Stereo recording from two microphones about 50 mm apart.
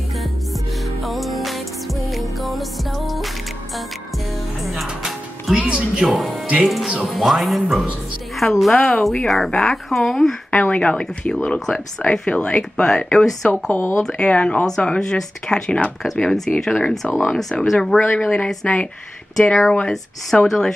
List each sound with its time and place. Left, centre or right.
1.0 s music: centre
5.7 s a woman's voice: centre
9.8 s speech: centre
10.5 s speech: left
13.5 s speech: left
13.9 s speech: centre
15.0 s speech: centre
16.0 s speech: centre